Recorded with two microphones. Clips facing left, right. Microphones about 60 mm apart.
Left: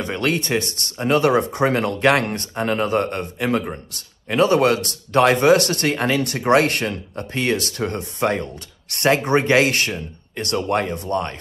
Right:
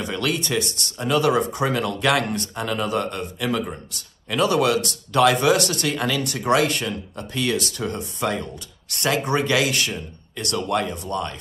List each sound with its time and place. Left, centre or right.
0.0 s speech: left
7.2 s speech: left